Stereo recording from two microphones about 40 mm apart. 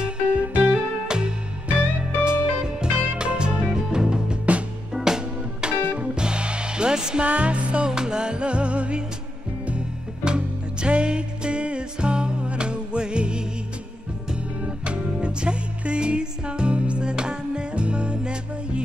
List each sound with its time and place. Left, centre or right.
0.5 s music: right
7.2 s music: right
7.9 s music: centre
14.6 s music: right